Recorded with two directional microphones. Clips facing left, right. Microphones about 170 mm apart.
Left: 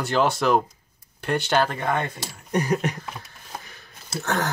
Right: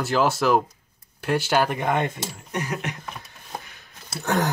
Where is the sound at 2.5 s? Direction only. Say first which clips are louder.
Left 7 dB; 40° left (ahead or behind).